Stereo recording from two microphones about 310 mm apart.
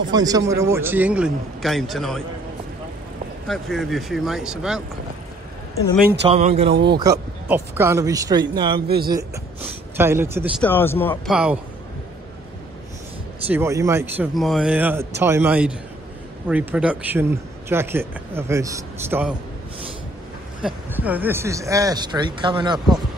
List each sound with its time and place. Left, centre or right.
0.1 s speech: centre
3.4 s speech: centre
6.2 s speech: centre
6.7 s speech: right
7.0 s speech: centre
8.8 s speech: right
9.9 s speech: centre
10.6 s speech: centre
13.5 s speech: centre
20.6 s speech: centre